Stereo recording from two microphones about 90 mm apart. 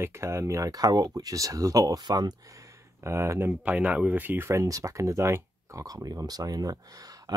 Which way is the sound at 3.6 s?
15° right (ahead or behind).